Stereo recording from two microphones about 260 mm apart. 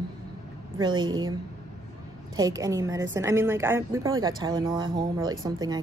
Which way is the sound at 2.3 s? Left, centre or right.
Centre.